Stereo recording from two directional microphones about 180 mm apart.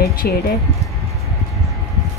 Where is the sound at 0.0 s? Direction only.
60° left (ahead or behind).